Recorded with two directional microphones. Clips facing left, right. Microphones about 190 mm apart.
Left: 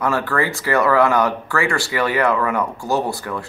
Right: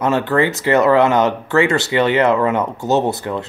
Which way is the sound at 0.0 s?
20° right (ahead or behind).